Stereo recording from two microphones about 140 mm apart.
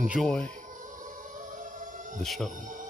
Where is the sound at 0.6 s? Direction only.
70° right (ahead or behind).